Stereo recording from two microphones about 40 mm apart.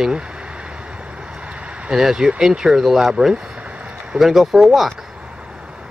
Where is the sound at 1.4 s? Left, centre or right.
Right.